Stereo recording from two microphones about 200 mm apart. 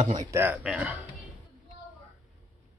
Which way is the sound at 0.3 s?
10° right (ahead or behind).